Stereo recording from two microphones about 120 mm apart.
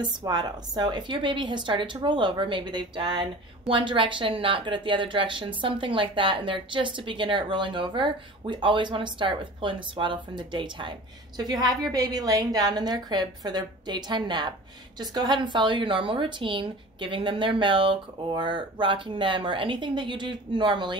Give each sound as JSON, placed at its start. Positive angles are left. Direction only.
{"t": 0.2, "sound": "a woman's voice", "side_deg": -35}